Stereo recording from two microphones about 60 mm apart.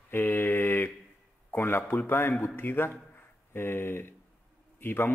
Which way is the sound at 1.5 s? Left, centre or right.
Left.